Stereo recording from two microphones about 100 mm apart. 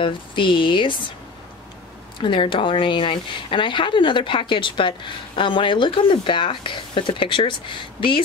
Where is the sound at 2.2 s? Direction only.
55° left (ahead or behind).